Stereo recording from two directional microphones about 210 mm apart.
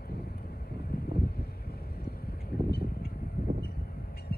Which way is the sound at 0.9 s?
45° left (ahead or behind).